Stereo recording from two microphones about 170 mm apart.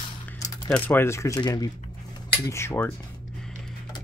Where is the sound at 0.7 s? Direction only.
10° left (ahead or behind).